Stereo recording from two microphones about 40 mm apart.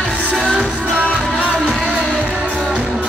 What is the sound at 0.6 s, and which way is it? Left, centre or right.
Music, left.